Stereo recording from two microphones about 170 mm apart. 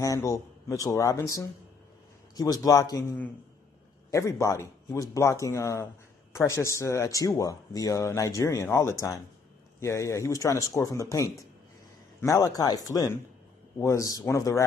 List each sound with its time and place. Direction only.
0.0 s speech: 20° left (ahead or behind)